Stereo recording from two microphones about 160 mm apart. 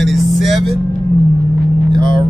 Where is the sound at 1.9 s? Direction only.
30° right (ahead or behind).